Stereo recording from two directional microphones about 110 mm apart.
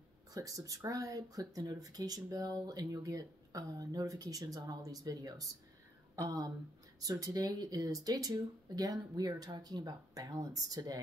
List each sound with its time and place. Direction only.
0.3 s speech: 30° right (ahead or behind)